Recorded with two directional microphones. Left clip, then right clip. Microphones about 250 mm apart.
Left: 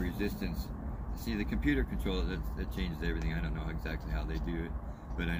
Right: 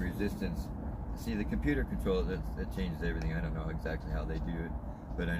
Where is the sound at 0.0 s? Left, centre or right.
Right.